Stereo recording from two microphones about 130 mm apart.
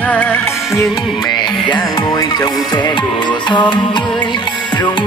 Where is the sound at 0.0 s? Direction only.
15° left (ahead or behind).